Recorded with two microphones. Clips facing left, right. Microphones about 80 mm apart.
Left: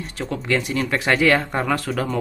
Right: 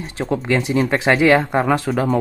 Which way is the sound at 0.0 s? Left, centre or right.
Right.